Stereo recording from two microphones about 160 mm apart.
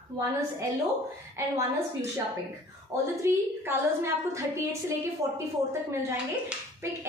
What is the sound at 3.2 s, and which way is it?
Speech, 15° right (ahead or behind).